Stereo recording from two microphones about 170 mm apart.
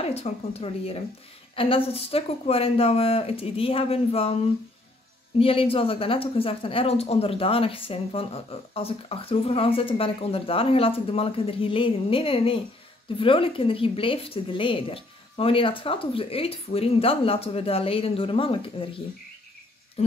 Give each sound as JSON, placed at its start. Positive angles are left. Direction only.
{"t": 0.0, "sound": "a woman's voice", "side_deg": 40}
{"t": 5.4, "sound": "a woman's voice", "side_deg": 35}